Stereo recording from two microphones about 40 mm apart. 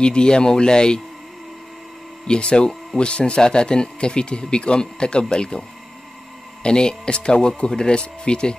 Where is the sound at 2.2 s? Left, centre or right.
Left.